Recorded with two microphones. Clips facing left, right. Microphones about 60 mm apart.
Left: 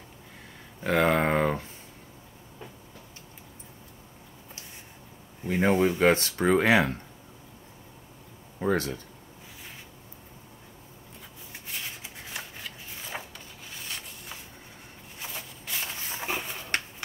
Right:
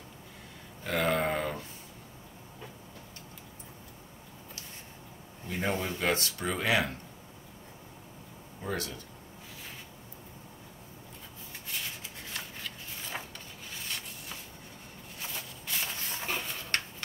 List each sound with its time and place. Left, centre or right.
1.0 s speech: left
5.5 s speech: left
8.5 s speech: left
12.0 s a sound: centre
13.7 s rub: centre
15.1 s a sound: centre